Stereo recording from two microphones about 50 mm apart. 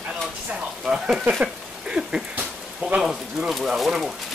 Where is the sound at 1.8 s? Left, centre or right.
Centre.